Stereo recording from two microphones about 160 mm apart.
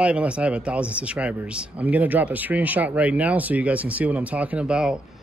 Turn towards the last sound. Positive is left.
turn(degrees=-5)  # may be behind; listen again after turning